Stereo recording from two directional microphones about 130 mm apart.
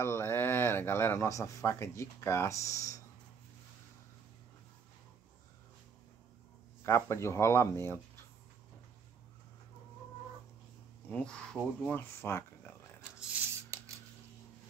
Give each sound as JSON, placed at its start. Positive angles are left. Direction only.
{"t": 0.0, "sound": "speech", "side_deg": 20}
{"t": 6.8, "sound": "speech", "side_deg": 20}
{"t": 11.1, "sound": "speech", "side_deg": 10}